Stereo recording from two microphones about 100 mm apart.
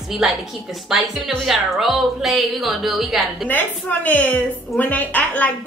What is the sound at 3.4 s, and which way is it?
A woman's voice, 15° left (ahead or behind).